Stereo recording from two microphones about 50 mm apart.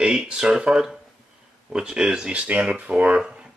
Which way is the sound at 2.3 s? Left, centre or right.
Right.